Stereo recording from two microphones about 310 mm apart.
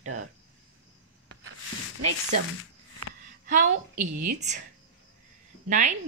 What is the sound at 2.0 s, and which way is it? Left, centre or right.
Stir, right.